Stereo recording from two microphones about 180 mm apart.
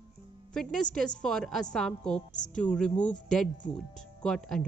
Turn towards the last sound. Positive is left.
turn(degrees=5)  # may be behind; listen again after turning